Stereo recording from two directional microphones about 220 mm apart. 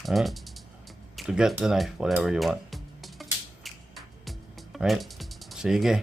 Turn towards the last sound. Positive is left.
turn(degrees=0)  # may be behind; listen again after turning